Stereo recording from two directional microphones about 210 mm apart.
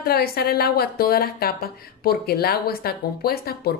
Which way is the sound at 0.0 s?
45° left (ahead or behind).